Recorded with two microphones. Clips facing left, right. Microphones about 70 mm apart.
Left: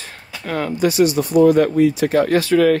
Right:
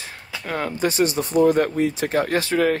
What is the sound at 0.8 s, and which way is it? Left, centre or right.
Speech, right.